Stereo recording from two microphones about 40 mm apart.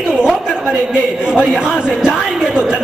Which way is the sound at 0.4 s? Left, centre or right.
Right.